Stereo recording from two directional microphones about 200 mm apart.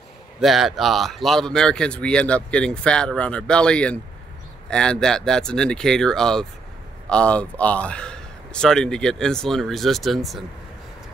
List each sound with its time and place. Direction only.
0.4 s speech: centre (ahead or behind)